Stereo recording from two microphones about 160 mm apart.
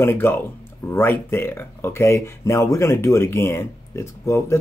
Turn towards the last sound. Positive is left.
turn(degrees=15)  # may be behind; listen again after turning